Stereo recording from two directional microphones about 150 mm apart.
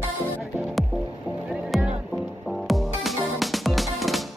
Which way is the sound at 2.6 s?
Centre (ahead or behind).